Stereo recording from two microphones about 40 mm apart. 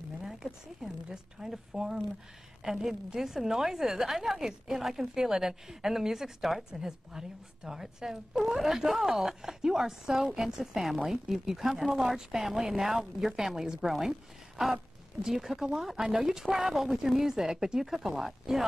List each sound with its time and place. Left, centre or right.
0.2 s a woman's voice: centre
2.6 s a woman's voice: centre
15.2 s a woman's voice: centre